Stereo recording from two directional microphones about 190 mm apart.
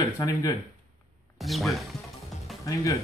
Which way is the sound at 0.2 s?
20° left (ahead or behind).